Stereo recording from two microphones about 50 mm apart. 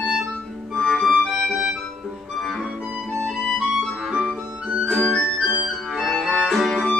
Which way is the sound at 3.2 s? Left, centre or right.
Centre.